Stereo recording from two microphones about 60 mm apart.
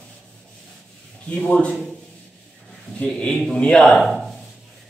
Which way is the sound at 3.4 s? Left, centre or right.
Centre.